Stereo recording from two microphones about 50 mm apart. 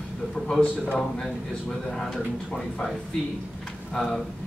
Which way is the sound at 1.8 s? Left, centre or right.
Centre.